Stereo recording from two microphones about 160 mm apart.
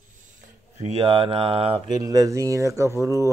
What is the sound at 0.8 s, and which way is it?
Speech, 40° right (ahead or behind).